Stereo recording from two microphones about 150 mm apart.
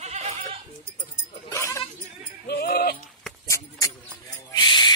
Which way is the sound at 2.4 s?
90° left.